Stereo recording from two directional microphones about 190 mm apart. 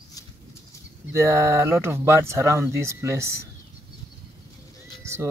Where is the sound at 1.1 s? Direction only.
15° right (ahead or behind).